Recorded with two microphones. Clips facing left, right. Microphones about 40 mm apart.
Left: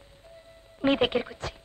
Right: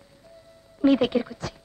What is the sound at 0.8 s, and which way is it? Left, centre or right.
Speech, left.